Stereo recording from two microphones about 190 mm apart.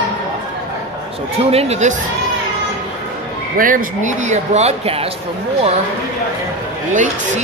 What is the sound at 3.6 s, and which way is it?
Speech, 45° right (ahead or behind).